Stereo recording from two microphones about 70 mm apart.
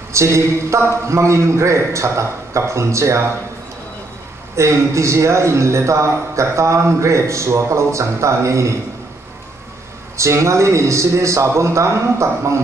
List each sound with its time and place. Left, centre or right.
0.1 s a man's voice: right
4.6 s a man's voice: right
10.1 s a man's voice: right